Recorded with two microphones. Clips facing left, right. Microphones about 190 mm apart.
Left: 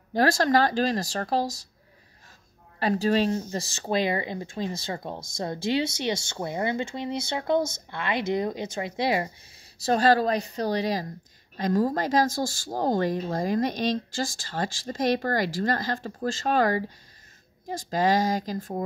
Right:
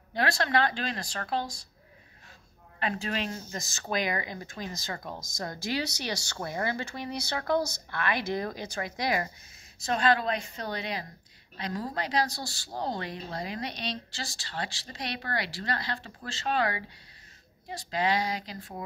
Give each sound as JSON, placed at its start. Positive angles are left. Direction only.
{"t": 0.1, "sound": "speech", "side_deg": 40}
{"t": 2.8, "sound": "speech", "side_deg": 35}
{"t": 9.8, "sound": "speech", "side_deg": 40}